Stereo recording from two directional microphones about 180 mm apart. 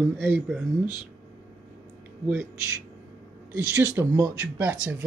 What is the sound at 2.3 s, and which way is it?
Speech, 15° right (ahead or behind).